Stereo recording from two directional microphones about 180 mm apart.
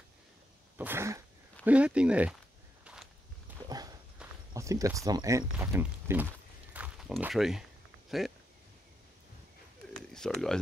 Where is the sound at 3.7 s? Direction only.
20° right (ahead or behind).